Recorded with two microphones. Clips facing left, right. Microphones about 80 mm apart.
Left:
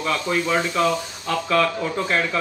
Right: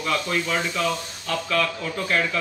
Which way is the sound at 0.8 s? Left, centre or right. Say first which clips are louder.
Left 4 dB; left.